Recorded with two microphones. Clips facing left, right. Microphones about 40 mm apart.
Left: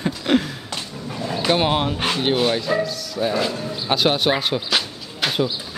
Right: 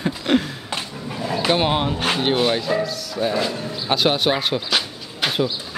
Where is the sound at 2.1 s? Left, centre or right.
Centre.